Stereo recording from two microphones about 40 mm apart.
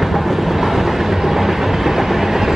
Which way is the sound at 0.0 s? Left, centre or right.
Centre.